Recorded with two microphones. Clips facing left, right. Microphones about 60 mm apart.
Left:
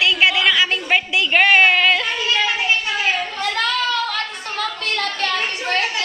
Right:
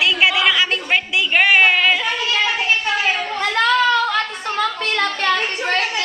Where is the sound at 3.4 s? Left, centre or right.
Right.